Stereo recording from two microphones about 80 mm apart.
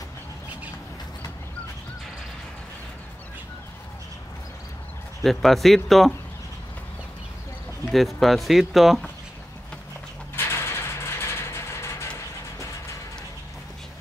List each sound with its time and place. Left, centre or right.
5.2 s speech: centre
7.9 s speech: centre
10.3 s vehicle: left